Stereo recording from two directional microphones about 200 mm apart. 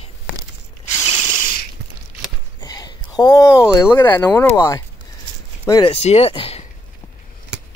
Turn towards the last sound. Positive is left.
turn(degrees=30)  # may be behind; listen again after turning